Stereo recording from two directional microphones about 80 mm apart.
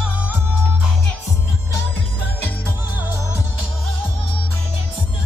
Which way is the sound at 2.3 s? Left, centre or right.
Left.